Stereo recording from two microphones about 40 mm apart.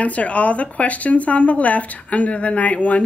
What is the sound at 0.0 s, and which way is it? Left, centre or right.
Speech, left.